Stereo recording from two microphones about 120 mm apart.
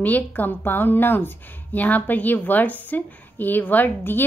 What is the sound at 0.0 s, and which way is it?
A woman's voice, 15° left (ahead or behind).